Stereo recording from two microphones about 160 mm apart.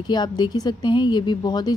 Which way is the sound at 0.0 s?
25° left (ahead or behind).